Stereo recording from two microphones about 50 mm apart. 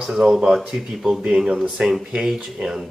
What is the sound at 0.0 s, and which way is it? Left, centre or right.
Speech, centre.